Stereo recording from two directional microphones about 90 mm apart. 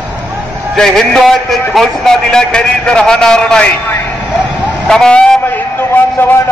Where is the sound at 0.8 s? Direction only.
5° left (ahead or behind).